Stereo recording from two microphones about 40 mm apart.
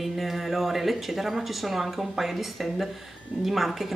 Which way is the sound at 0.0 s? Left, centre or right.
Centre.